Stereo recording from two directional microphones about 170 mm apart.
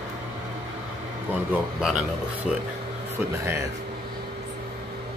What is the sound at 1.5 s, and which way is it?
Speech, 5° right (ahead or behind).